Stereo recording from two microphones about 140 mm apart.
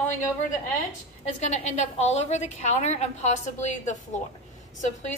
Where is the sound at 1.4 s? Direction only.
55° left (ahead or behind).